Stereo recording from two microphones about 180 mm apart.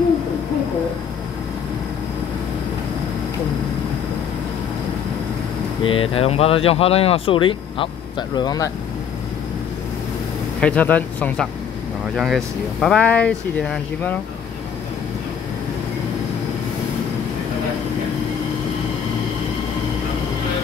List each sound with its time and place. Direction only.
5.9 s speech: 30° left (ahead or behind)
10.6 s speech: 5° left (ahead or behind)